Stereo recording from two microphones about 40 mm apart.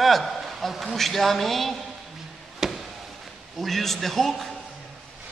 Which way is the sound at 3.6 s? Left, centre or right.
Centre.